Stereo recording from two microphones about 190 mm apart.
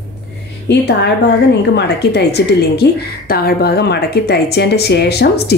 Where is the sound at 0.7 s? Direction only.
65° left (ahead or behind).